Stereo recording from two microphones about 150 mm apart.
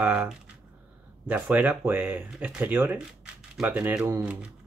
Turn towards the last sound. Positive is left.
turn(degrees=-10)  # may be behind; listen again after turning